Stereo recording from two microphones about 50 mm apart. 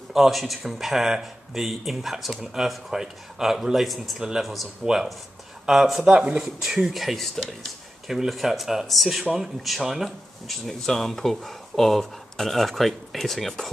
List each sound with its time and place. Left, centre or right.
0.1 s speech: centre
6.1 s speech: centre
6.4 s speech: centre